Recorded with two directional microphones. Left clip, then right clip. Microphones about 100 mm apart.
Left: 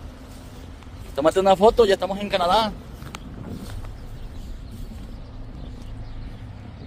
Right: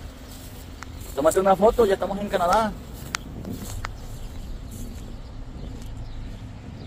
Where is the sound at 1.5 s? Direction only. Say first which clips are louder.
Left 4 dB; 60° left (ahead or behind).